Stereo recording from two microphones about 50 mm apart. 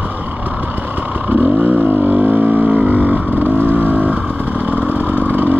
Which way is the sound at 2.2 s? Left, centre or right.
Right.